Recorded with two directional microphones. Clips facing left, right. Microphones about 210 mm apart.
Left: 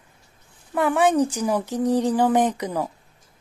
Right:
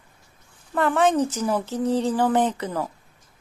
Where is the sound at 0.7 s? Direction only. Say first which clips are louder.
Left 1 dB; 10° left (ahead or behind).